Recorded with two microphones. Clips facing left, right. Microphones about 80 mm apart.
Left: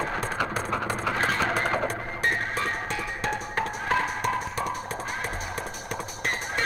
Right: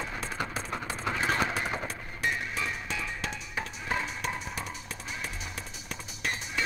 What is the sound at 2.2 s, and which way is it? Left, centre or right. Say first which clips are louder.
Music: left 4 dB; left.